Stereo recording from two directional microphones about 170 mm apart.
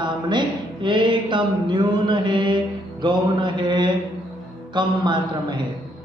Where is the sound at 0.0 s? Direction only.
25° right (ahead or behind).